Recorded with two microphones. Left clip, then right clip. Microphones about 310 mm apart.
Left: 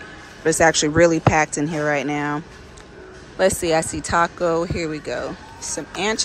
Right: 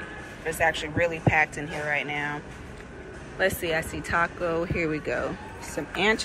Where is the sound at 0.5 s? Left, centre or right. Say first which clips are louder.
Left 9 dB; left.